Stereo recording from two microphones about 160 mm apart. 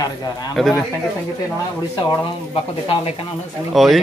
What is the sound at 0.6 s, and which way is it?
Speech, centre (ahead or behind).